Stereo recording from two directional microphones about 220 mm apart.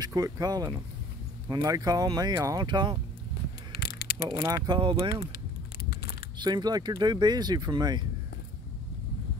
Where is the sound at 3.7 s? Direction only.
45° left (ahead or behind).